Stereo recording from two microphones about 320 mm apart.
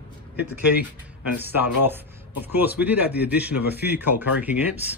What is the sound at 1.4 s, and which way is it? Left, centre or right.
Speech, centre.